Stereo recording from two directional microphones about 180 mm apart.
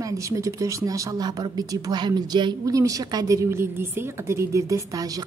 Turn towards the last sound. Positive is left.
turn(degrees=-20)  # may be behind; listen again after turning